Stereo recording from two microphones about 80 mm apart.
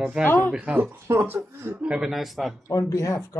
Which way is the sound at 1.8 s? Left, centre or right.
Centre.